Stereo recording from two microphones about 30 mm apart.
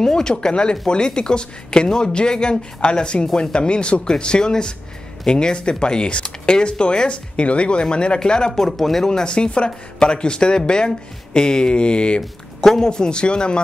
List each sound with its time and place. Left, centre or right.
0.0 s speech: left
2.8 s speech: left
8.5 s speech: centre
9.1 s speech: left
12.5 s speech: centre
12.9 s speech: left